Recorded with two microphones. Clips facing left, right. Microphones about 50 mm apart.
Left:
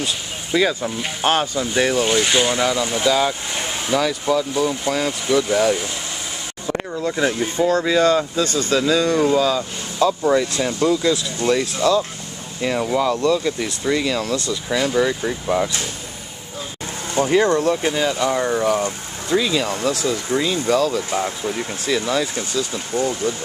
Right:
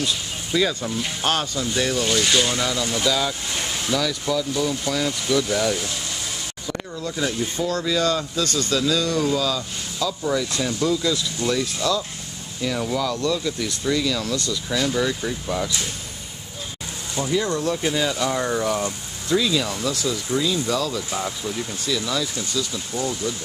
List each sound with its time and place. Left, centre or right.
0.0 s speech: centre
6.7 s speech: left
17.1 s speech: left
17.8 s speech: centre; by 23.3 s left